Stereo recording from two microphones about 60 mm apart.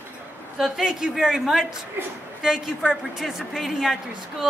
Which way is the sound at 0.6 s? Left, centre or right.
Centre.